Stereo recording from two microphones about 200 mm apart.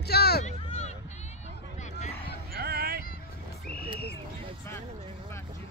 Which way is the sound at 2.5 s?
50° right (ahead or behind).